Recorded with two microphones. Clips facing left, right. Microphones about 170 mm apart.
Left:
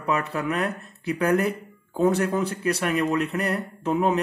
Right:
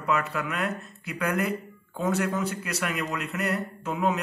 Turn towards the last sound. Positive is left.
turn(degrees=30)  # may be behind; listen again after turning